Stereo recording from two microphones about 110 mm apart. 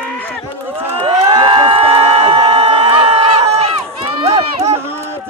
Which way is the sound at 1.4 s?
45° right (ahead or behind).